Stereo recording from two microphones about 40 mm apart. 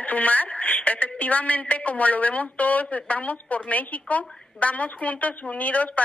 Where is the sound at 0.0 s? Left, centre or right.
Left.